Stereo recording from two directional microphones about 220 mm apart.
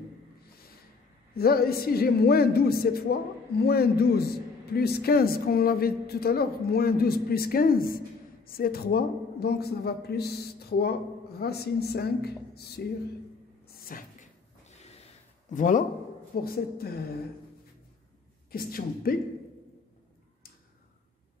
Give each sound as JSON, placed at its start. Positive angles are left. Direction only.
{"t": 1.3, "sound": "a man's voice", "side_deg": 45}
{"t": 13.7, "sound": "cupboard open or close", "side_deg": 40}
{"t": 14.7, "sound": "snort", "side_deg": 30}
{"t": 15.5, "sound": "a man's voice", "side_deg": 35}
{"t": 18.5, "sound": "a man's voice", "side_deg": 40}